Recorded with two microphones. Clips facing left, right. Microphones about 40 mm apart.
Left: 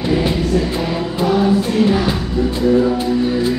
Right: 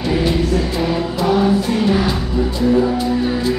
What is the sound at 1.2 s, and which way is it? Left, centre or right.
Choir, centre.